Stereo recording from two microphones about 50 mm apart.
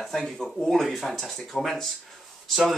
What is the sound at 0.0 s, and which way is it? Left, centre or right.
Speech, centre.